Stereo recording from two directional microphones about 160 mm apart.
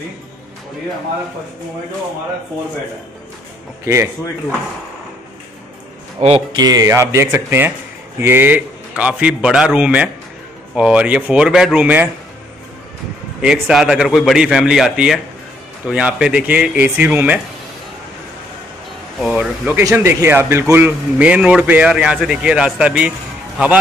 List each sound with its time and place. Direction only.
3.8 s speech: 15° right (ahead or behind)
6.1 s speech: 35° right (ahead or behind)
6.6 s speech: 20° right (ahead or behind)
13.4 s a man's voice: 5° right (ahead or behind)
19.1 s a man's voice: centre (ahead or behind)
19.8 s speech: 15° right (ahead or behind)